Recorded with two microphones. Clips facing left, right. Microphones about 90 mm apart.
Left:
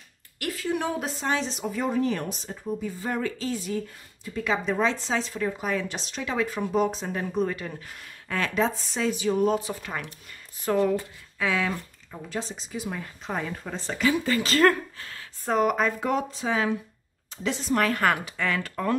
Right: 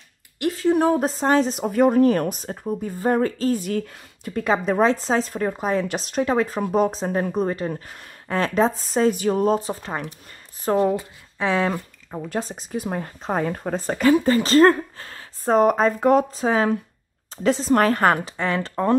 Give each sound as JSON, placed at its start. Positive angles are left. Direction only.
{"t": 0.4, "sound": "speech", "side_deg": -25}
{"t": 3.7, "sound": "speech", "side_deg": -65}
{"t": 5.9, "sound": "speech", "side_deg": -50}